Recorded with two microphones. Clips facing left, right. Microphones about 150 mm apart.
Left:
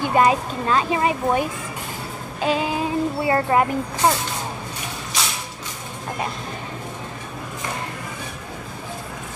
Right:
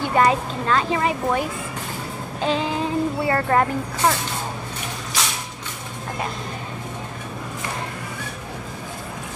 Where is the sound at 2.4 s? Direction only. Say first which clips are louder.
Left 1 dB; 10° left (ahead or behind).